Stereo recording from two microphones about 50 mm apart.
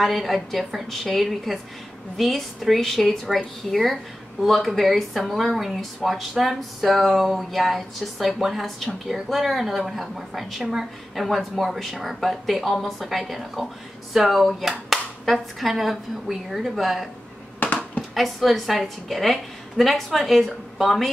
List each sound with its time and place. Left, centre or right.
0.0 s speech: centre
17.6 s a sound: left
18.1 s speech: centre